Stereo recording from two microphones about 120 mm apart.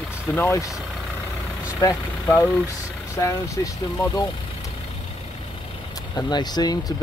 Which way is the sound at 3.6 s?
25° left (ahead or behind).